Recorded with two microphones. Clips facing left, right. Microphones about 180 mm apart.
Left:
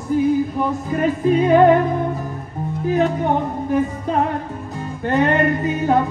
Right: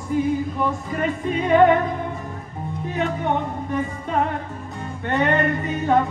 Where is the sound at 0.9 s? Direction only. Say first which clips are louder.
Left 9 dB; 35° left (ahead or behind).